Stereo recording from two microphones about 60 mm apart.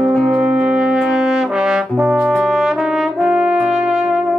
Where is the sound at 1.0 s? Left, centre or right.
Centre.